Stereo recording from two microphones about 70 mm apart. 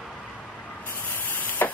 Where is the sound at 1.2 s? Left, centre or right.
Left.